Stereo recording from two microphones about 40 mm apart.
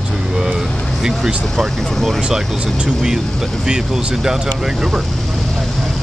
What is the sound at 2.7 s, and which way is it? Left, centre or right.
Speech, centre.